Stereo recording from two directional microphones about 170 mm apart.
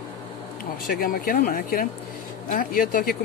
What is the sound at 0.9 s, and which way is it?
Speech, 60° left (ahead or behind).